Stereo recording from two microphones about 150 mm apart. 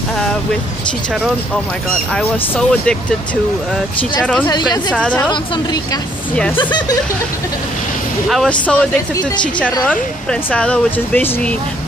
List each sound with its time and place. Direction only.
2.1 s speech: 5° left (ahead or behind)
4.5 s speech: 30° left (ahead or behind)
4.9 s speech: 5° left (ahead or behind)
6.5 s speech: 30° left (ahead or behind)
8.3 s speech: 5° left (ahead or behind)
10.5 s speech: 10° left (ahead or behind)